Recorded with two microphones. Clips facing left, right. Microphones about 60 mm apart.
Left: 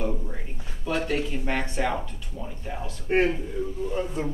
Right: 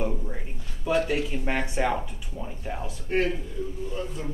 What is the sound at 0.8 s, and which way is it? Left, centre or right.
Speech, centre.